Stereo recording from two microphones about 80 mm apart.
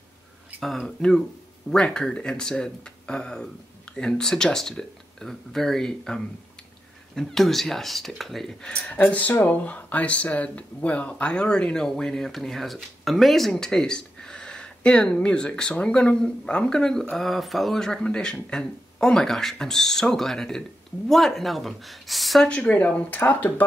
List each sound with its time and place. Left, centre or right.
0.6 s speech: centre
22.5 s speech: centre